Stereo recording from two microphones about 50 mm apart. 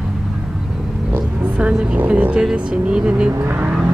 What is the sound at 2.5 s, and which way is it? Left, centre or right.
Speech, right.